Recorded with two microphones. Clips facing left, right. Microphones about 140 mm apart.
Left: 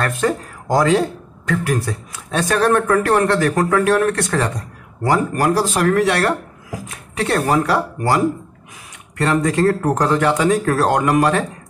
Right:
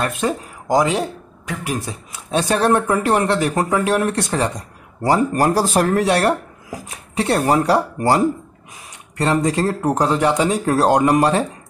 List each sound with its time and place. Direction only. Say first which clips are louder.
0.0 s speech: left 2 dB; 15° right (ahead or behind)
5.5 s speech: even; 40° right (ahead or behind); by 7.6 s 20° right (ahead or behind)
9.2 s speech: left 2 dB; 25° right (ahead or behind)